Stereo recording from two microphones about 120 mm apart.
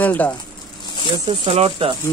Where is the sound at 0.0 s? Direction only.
15° left (ahead or behind).